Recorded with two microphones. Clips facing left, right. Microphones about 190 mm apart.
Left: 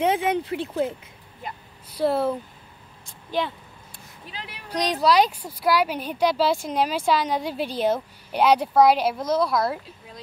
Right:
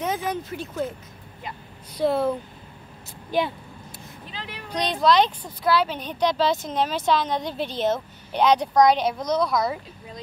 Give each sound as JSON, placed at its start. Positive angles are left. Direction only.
{"t": 0.0, "sound": "speech", "side_deg": 30}
{"t": 2.0, "sound": "speech", "side_deg": 5}
{"t": 3.1, "sound": "vehicle", "side_deg": -10}
{"t": 4.3, "sound": "speech", "side_deg": 10}